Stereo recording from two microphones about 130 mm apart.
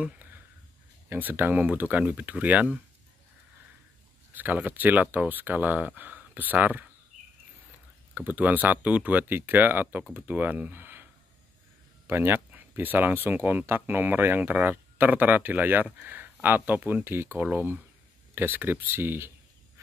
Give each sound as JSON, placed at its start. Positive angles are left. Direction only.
{"t": 0.0, "sound": "a sound", "side_deg": -15}
{"t": 1.0, "sound": "speech", "side_deg": -15}
{"t": 4.3, "sound": "speech", "side_deg": -15}
{"t": 8.1, "sound": "speech", "side_deg": -15}
{"t": 12.1, "sound": "speech", "side_deg": -15}